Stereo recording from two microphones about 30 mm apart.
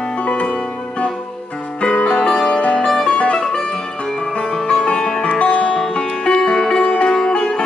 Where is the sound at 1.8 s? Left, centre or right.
Left.